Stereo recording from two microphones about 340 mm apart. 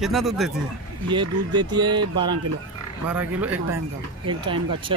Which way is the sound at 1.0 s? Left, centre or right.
Centre.